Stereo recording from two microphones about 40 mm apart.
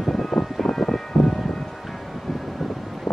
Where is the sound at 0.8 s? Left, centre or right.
Centre.